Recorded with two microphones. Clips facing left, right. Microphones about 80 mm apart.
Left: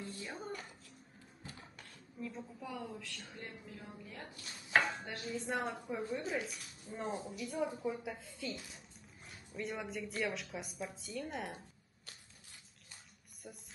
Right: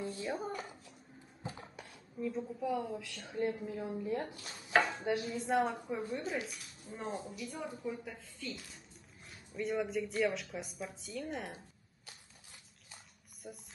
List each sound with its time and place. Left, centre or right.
0.2 s speech: centre
1.4 s a sound: right
2.1 s speech: centre
3.3 s a woman's voice: right
5.0 s speech: centre
5.3 s speech: centre
9.6 s speech: centre
13.4 s speech: centre